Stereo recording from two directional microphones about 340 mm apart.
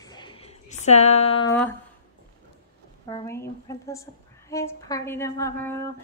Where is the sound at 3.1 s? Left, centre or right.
Centre.